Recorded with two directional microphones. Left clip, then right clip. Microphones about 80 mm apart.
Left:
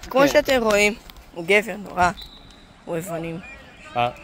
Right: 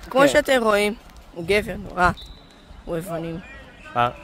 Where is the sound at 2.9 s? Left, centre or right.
Right.